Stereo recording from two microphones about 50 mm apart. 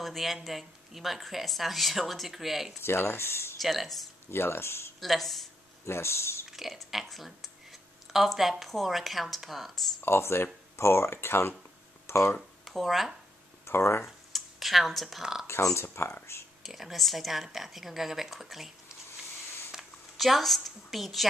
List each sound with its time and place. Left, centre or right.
0.0 s speech: centre
2.8 s speech: left
3.5 s speech: centre
4.3 s speech: left
5.0 s speech: centre
5.9 s speech: left
6.5 s speech: centre
10.0 s speech: left
12.4 s speech: centre
13.7 s speech: left
14.0 s speech: centre
15.4 s speech: left
16.6 s speech: centre
20.2 s a woman's voice: centre